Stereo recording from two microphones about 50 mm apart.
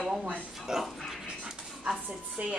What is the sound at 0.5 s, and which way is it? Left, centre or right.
Speech, centre.